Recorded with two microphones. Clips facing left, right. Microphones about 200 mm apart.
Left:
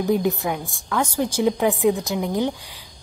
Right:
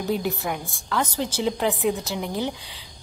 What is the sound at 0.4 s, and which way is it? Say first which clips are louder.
Speech: left 3 dB; centre (ahead or behind).